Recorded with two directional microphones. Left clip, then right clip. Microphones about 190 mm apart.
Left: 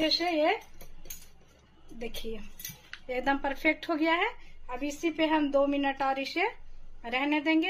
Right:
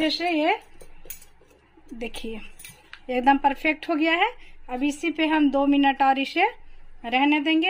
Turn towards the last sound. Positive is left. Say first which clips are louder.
# right 6 dB
turn(degrees=-40)  # may be behind; listen again after turning